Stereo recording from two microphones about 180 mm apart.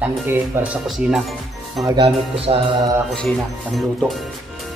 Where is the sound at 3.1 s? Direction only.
Centre (ahead or behind).